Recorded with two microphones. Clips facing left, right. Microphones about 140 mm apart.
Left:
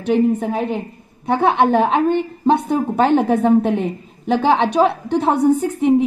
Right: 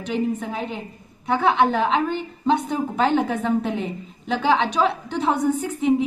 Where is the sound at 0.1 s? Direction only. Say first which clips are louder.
Left 8 dB; 50° left (ahead or behind).